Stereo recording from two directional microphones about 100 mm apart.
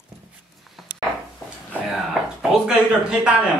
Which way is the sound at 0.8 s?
Centre (ahead or behind).